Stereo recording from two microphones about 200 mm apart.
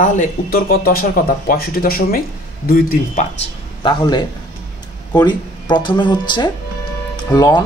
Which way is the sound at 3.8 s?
20° left (ahead or behind).